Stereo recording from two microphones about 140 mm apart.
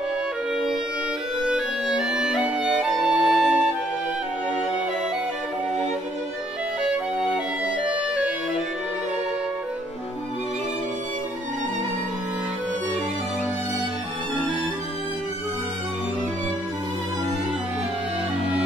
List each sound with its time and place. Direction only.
1.5 s clarinet: 5° right (ahead or behind)